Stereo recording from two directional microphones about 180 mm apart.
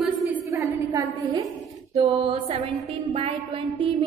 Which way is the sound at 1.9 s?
30° right (ahead or behind).